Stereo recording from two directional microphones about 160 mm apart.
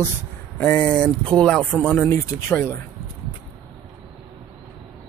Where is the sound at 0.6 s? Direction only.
10° left (ahead or behind).